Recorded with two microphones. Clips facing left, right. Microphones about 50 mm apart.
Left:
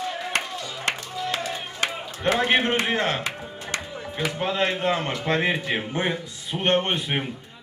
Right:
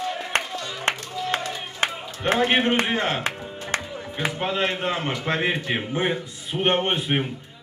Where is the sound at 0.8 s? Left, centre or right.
Right.